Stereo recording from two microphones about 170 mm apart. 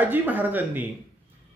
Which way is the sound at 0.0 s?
10° right (ahead or behind).